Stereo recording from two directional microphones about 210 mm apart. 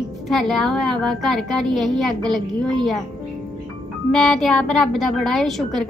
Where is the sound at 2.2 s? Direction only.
20° right (ahead or behind).